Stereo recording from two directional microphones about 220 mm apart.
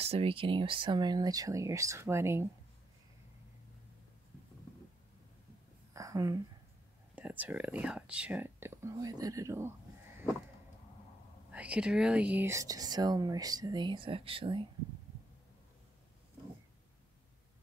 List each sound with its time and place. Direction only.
0.0 s speech: 25° right (ahead or behind)
5.9 s a sound: 15° right (ahead or behind)
7.2 s speech: 5° right (ahead or behind)
11.5 s speech: 5° right (ahead or behind); by 14.6 s 25° right (ahead or behind)